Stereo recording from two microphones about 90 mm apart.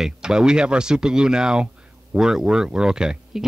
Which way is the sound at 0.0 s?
5° right (ahead or behind).